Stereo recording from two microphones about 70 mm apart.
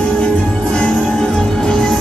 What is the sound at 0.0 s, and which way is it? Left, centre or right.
Music, centre.